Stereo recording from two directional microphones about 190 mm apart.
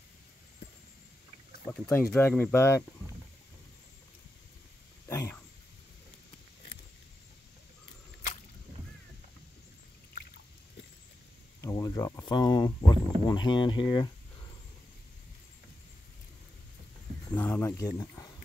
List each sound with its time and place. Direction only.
1.7 s speech: 10° left (ahead or behind)
5.0 s a sound: 15° left (ahead or behind)
11.6 s insect: 20° left (ahead or behind)
17.4 s speech: 10° left (ahead or behind)